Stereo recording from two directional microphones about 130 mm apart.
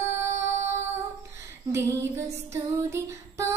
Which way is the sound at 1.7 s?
20° right (ahead or behind).